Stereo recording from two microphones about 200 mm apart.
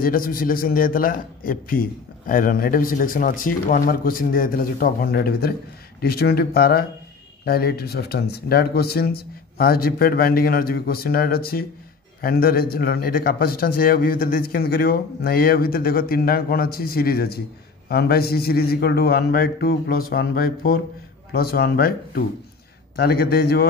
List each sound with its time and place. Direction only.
0.0 s a man's voice: 45° left (ahead or behind)